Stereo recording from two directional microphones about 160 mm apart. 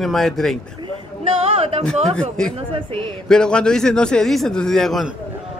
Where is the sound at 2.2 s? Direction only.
5° left (ahead or behind).